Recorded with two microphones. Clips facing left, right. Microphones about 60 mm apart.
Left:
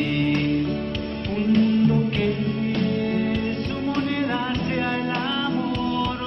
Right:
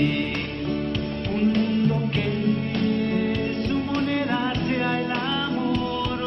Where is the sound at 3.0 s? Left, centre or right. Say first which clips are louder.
Left 1 dB; centre.